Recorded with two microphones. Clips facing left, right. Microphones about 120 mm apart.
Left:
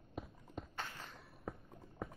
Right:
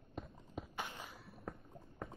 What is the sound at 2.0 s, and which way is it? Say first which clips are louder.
Clip-clop: left 1 dB; 5° left (ahead or behind).